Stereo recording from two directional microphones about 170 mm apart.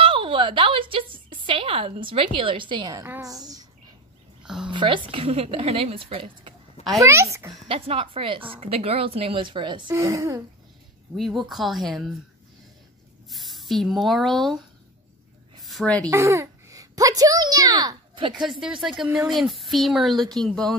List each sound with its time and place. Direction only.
0.0 s a woman's voice: 30° right (ahead or behind)
4.4 s a sound: 5° right (ahead or behind)
4.6 s speech: 30° right (ahead or behind)
7.0 s speech: 15° right (ahead or behind)
7.6 s a woman's voice: 35° right (ahead or behind)
11.1 s speech: centre (ahead or behind)
13.3 s speech: centre (ahead or behind)
15.6 s a woman's voice: 5° left (ahead or behind)
16.1 s a child's voice: 15° right (ahead or behind)
18.8 s speech: 5° right (ahead or behind)